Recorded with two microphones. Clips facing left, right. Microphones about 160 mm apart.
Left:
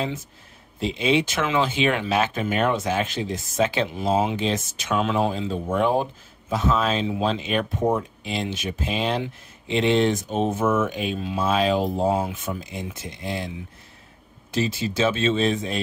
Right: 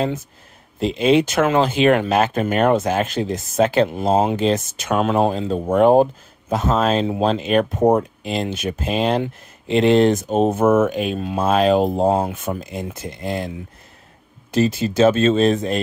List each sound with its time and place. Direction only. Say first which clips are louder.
0.7 s speech: right 6 dB; 45° right (ahead or behind)
14.5 s speech: right 6 dB; 45° right (ahead or behind)